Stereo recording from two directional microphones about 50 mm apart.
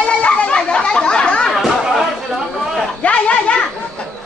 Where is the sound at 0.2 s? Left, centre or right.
Left.